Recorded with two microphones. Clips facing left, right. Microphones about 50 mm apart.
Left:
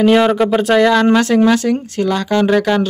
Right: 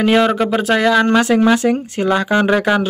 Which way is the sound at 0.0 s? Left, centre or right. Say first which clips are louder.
Left 2 dB; centre.